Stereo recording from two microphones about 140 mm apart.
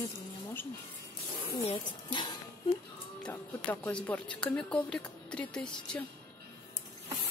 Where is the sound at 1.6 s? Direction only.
35° left (ahead or behind).